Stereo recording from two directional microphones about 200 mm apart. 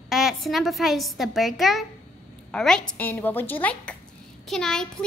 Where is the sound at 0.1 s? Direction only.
Centre (ahead or behind).